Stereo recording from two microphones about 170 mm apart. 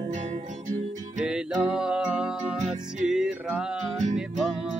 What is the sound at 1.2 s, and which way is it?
Music, 5° right (ahead or behind).